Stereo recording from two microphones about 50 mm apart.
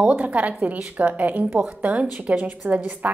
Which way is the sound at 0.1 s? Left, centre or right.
Right.